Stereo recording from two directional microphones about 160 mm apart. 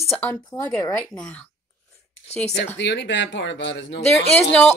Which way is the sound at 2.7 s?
90° left.